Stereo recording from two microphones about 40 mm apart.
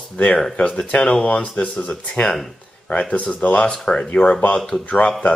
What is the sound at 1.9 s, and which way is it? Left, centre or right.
Speech, centre.